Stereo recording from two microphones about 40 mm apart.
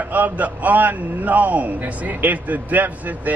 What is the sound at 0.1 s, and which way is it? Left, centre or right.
A man's voice, right.